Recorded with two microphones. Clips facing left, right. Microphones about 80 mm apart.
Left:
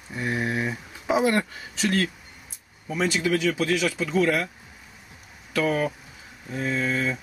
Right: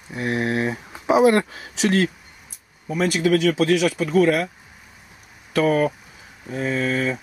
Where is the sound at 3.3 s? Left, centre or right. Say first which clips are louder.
Right 5 dB; right.